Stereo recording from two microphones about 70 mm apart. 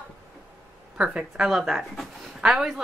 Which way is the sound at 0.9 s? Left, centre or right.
Centre.